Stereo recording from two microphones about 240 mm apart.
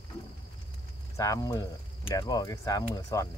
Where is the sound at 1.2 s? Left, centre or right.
Centre.